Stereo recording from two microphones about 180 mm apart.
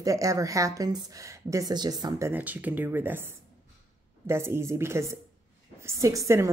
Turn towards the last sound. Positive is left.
turn(degrees=-15)  # may be behind; listen again after turning